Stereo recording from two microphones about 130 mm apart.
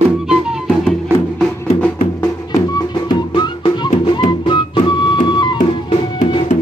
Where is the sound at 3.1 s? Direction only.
35° left (ahead or behind).